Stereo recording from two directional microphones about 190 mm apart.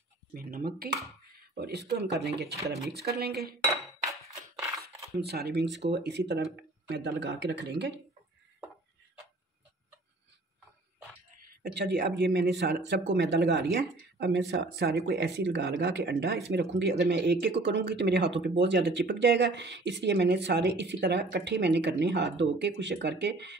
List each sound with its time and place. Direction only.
0.3 s speech: 50° right (ahead or behind)
5.2 s speech: 55° right (ahead or behind)
11.4 s speech: 50° right (ahead or behind)